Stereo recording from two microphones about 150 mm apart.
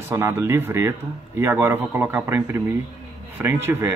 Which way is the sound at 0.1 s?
20° right (ahead or behind).